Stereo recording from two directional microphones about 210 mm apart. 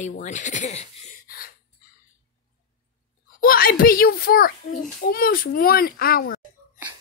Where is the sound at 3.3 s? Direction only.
45° left (ahead or behind).